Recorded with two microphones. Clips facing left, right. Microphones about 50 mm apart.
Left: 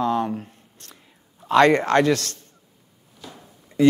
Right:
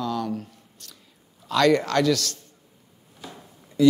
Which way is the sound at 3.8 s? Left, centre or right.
Left.